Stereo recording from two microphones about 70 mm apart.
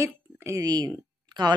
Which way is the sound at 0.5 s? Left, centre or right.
Right.